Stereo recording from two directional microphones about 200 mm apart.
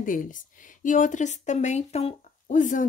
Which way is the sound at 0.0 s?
40° left (ahead or behind).